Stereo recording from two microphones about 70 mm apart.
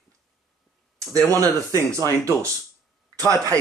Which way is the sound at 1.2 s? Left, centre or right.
Right.